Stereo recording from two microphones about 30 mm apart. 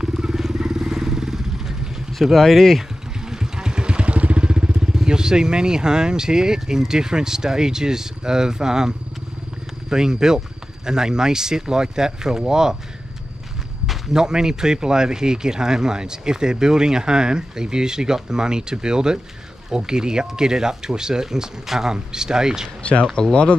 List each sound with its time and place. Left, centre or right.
0.2 s vehicle: centre
2.4 s speech: centre
3.3 s vehicle: right
5.0 s speech: right
14.1 s speech: right
23.2 s speech: left